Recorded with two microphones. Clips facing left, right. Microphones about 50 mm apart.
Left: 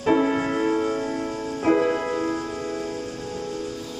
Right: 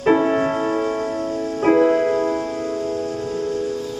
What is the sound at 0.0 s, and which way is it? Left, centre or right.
Music, right.